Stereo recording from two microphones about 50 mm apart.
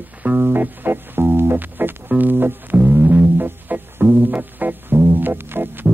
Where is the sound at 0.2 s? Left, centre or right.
Right.